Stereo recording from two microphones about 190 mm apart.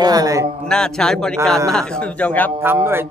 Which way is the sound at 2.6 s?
10° right (ahead or behind).